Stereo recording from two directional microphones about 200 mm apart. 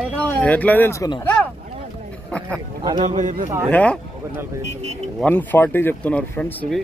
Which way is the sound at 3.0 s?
40° right (ahead or behind).